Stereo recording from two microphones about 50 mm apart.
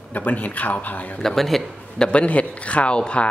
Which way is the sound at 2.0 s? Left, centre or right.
Left.